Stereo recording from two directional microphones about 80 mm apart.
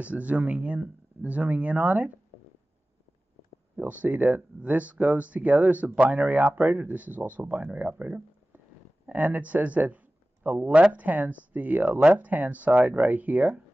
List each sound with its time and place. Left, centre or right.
0.0 s speech: centre
3.7 s speech: centre